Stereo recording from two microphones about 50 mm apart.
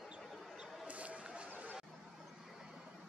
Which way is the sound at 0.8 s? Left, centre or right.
Right.